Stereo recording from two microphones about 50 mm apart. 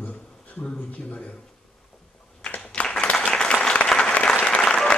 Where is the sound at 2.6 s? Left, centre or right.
Centre.